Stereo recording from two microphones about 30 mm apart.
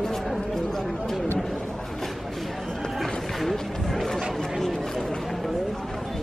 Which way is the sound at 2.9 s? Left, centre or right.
Centre.